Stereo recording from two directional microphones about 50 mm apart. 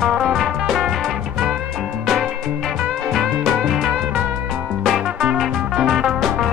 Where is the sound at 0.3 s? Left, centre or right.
Centre.